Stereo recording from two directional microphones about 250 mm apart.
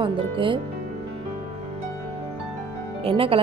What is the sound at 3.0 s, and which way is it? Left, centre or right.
Speech, right.